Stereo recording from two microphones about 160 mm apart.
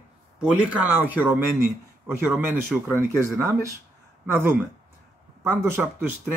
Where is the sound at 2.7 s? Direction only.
15° right (ahead or behind).